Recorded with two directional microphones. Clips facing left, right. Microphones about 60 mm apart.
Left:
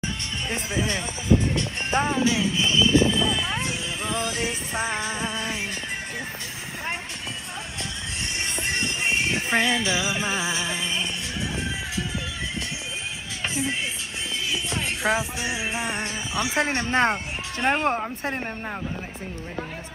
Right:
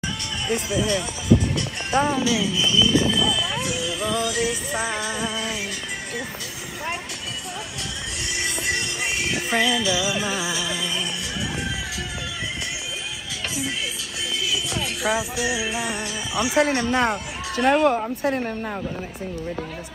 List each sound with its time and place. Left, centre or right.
0.5 s speech: left
8.4 s music: left
14.5 s music: left
18.2 s speech: centre